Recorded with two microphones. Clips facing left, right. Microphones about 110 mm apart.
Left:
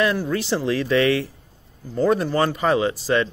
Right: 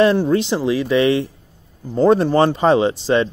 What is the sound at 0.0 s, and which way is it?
Speech, 30° right (ahead or behind).